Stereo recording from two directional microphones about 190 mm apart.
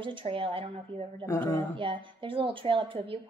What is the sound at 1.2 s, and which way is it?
Speech, 15° left (ahead or behind).